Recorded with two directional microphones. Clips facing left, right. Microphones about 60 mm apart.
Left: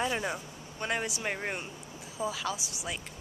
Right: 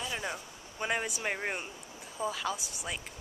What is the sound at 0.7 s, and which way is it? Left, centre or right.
Speech, centre.